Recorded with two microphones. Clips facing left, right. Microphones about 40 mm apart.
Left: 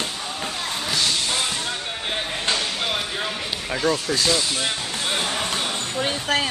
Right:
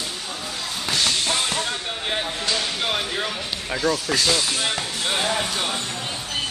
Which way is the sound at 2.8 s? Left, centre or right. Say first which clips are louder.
Right 1 dB; centre.